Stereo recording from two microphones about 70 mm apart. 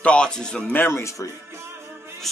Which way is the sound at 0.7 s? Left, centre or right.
Left.